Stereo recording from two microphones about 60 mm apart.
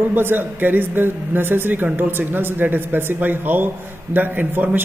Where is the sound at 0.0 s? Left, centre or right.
Right.